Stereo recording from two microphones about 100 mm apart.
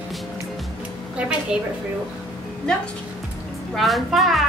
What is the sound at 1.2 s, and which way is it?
Speech, 10° right (ahead or behind).